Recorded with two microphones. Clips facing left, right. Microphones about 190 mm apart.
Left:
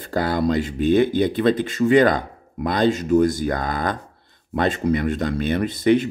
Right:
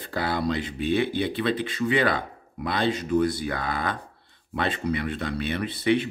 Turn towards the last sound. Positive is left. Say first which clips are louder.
# left 6 dB
turn(degrees=40)  # may be behind; listen again after turning